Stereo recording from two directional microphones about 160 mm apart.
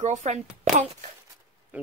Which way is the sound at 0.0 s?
45° right (ahead or behind).